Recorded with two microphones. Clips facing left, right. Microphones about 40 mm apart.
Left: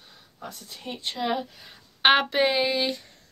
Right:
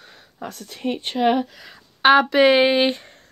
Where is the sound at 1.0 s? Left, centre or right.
Right.